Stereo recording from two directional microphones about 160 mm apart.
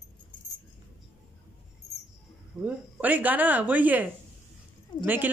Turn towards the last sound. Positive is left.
turn(degrees=-10)  # may be behind; listen again after turning